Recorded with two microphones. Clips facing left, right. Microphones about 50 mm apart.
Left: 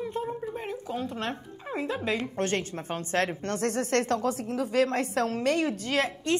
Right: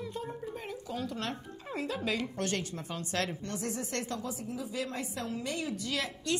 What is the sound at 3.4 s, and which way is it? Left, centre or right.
Speech, left.